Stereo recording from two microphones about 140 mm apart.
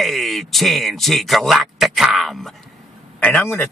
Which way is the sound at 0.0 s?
Centre (ahead or behind).